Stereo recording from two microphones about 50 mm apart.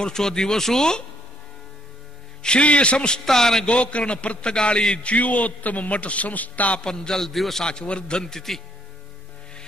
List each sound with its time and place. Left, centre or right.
0.0 s a man's voice: centre
2.4 s a man's voice: left
3.6 s a man's voice: left
6.8 s a man's voice: centre
7.6 s a man's voice: centre